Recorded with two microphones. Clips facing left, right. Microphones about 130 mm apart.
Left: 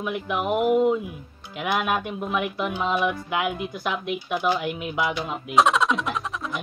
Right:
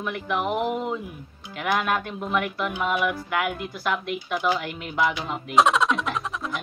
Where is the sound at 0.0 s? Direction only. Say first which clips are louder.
Even; 15° left (ahead or behind).